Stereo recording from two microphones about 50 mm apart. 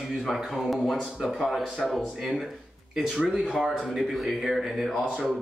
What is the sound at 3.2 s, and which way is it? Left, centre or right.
Speech, centre.